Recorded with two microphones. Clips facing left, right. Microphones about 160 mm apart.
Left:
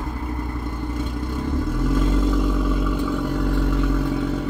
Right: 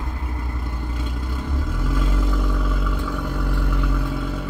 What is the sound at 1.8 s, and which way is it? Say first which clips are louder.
Vehicle: left 5 dB; 20° left (ahead or behind).